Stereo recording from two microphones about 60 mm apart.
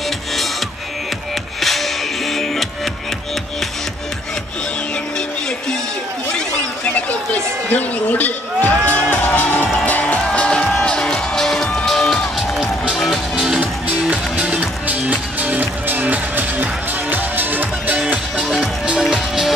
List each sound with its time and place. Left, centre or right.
1.6 s music: centre
6.3 s chatter: left
9.8 s music: left; by 12.3 s centre
12.4 s music: centre
13.6 s music: right
18.9 s music: centre